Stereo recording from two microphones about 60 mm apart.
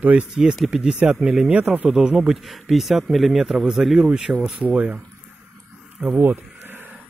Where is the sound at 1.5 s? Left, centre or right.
Right.